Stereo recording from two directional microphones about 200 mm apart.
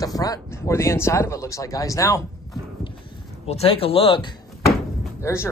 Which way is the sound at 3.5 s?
30° left (ahead or behind).